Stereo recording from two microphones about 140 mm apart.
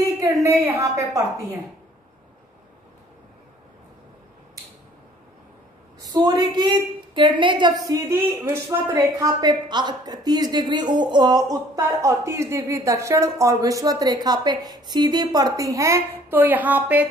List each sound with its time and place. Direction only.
0.2 s a woman's voice: 20° right (ahead or behind)
5.9 s a woman's voice: 30° right (ahead or behind); by 17.1 s 10° right (ahead or behind)